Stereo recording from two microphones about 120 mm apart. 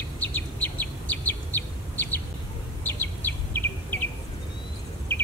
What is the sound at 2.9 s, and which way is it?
Insect, 15° left (ahead or behind).